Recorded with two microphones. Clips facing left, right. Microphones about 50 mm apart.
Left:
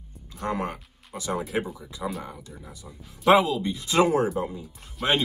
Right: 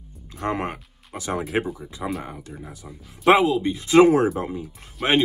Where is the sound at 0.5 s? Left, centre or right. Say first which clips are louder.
Right 3 dB; right.